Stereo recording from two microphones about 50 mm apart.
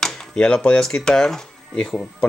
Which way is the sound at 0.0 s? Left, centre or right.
Centre.